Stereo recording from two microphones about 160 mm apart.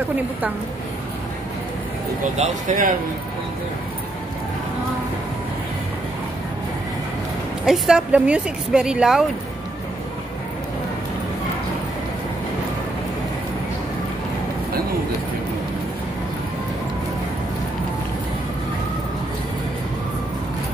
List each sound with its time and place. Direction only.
2.3 s speech: 50° right (ahead or behind)
7.6 s speech: 5° right (ahead or behind)